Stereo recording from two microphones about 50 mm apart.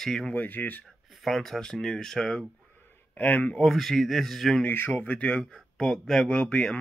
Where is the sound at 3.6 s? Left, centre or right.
Centre.